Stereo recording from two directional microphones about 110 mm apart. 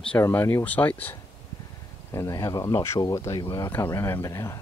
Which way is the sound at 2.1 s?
30° left (ahead or behind).